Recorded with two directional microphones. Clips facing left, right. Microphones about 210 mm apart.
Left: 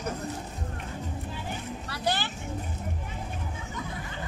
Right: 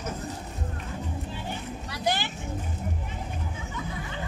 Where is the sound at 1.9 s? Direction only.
15° right (ahead or behind).